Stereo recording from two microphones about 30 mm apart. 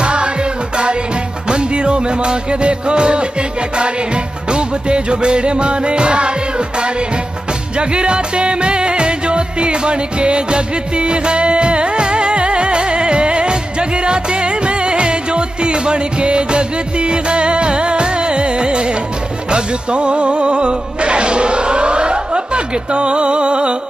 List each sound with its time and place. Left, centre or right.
0.0 s music: right
7.7 s music: right